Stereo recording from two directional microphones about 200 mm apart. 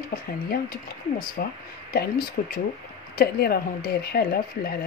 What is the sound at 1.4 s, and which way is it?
Speech, 50° left (ahead or behind).